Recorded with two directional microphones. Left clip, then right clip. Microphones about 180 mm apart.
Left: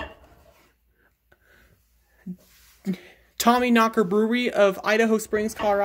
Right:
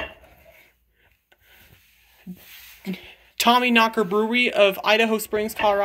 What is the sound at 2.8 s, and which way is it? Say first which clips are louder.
Speech: left 2 dB; 35° left (ahead or behind).